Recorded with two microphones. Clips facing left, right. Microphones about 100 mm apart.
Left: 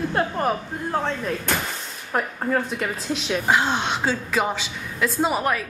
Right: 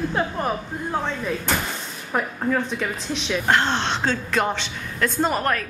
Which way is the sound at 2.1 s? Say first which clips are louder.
Even; 5° left (ahead or behind).